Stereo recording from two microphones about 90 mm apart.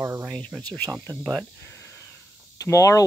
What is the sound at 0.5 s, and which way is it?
Speech, 15° right (ahead or behind).